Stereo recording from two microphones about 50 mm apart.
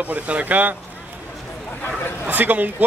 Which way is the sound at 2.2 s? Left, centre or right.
Right.